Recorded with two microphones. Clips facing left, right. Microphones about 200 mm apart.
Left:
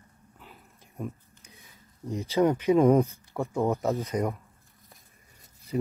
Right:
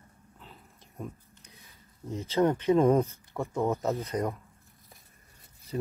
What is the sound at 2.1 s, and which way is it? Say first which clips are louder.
Speech: left 2 dB; 10° left (ahead or behind).